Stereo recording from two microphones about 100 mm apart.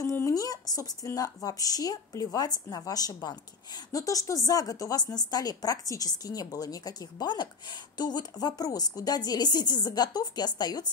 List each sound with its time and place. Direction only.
0.3 s speech: 35° left (ahead or behind)